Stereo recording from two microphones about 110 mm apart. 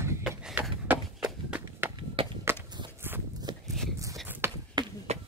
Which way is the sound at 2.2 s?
55° right (ahead or behind).